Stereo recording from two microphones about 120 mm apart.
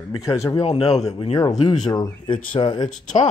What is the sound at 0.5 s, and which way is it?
Speech, 55° left (ahead or behind).